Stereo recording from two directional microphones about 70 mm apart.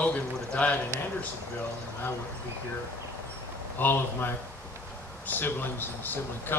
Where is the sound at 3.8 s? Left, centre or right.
Left.